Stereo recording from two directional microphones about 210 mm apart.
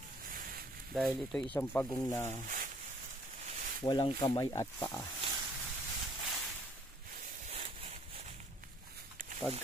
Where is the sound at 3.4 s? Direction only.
35° right (ahead or behind).